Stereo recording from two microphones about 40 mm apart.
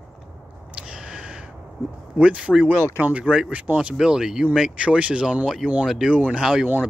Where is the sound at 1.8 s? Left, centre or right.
Right.